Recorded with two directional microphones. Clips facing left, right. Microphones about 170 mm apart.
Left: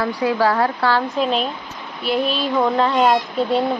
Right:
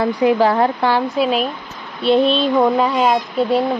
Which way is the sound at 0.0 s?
20° right (ahead or behind).